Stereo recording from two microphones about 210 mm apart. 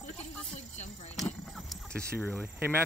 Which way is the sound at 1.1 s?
Centre (ahead or behind).